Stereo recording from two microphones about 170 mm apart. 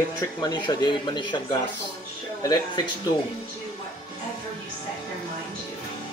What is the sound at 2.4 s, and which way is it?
Speech, 25° left (ahead or behind).